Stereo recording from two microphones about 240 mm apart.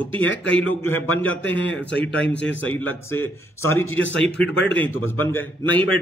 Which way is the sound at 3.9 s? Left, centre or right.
Left.